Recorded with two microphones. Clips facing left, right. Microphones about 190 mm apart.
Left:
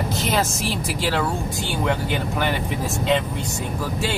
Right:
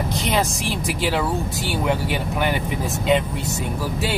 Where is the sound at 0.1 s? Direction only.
Centre (ahead or behind).